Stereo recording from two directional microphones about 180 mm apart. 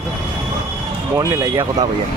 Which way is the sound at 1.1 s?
15° right (ahead or behind).